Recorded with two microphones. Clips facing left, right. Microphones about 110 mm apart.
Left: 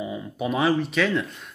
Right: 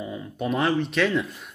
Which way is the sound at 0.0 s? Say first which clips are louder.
Left 1 dB; 5° left (ahead or behind).